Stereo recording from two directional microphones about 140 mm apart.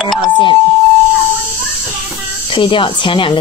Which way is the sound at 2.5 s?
35° left (ahead or behind).